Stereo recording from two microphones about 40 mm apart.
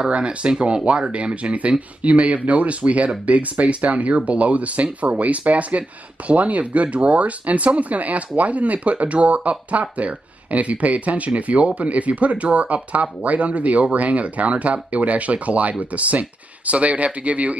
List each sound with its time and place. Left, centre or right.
0.0 s speech: right